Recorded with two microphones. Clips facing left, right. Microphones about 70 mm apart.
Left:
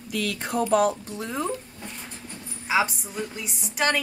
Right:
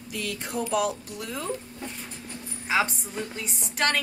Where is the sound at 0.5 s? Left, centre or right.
Left.